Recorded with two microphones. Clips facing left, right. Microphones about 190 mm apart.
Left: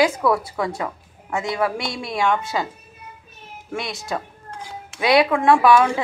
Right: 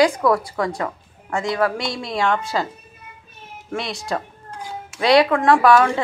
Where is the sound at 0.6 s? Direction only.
5° left (ahead or behind).